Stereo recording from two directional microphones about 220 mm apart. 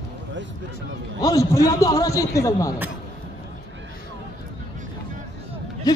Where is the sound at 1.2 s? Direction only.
15° left (ahead or behind).